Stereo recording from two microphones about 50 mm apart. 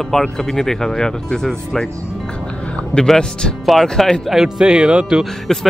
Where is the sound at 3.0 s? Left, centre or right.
Centre.